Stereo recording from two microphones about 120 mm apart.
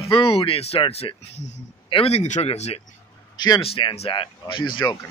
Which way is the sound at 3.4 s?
35° left (ahead or behind).